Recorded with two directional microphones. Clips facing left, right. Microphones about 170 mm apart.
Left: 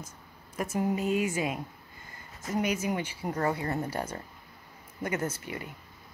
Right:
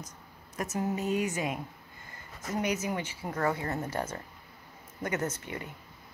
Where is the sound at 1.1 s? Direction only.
25° left (ahead or behind).